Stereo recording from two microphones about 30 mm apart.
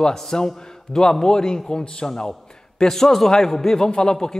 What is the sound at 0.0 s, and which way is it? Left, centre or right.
A man's voice, centre.